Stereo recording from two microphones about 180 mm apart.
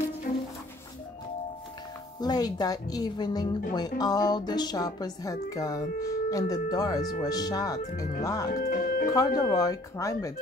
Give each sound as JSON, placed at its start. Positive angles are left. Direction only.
{"t": 0.3, "sound": "music", "side_deg": 50}
{"t": 2.1, "sound": "speech", "side_deg": 20}
{"t": 8.5, "sound": "speech", "side_deg": 50}
{"t": 9.4, "sound": "speech", "side_deg": 20}